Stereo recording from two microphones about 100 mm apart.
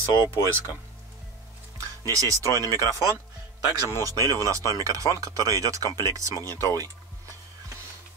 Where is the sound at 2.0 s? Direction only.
35° right (ahead or behind).